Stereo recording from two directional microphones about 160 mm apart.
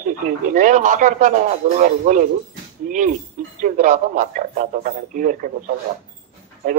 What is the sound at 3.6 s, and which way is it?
Speech, 55° right (ahead or behind).